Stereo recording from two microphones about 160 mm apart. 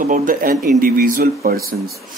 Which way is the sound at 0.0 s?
55° right (ahead or behind).